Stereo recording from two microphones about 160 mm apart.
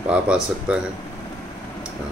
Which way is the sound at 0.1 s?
5° right (ahead or behind).